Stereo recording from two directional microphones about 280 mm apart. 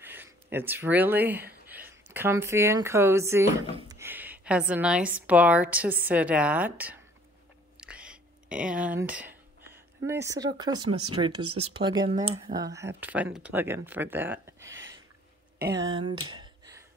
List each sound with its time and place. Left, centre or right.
0.0 s a sound: centre
2.1 s speech: centre
7.7 s a sound: centre
10.0 s speech: centre
10.9 s speech: right
11.6 s speech: centre